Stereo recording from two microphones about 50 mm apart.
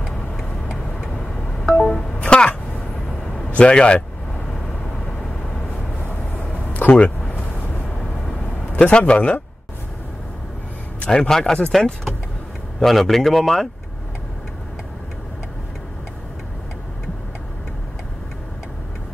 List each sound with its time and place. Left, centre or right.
1.2 s music: centre
3.4 s speech: left
6.0 s a sound: left
8.7 s speech: left
11.0 s a man's voice: centre
12.8 s speech: centre